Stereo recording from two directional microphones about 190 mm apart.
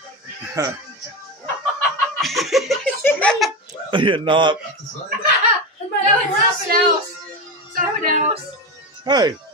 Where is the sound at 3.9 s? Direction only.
25° right (ahead or behind).